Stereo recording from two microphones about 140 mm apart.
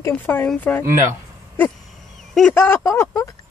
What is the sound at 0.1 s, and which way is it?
Speech, 15° left (ahead or behind).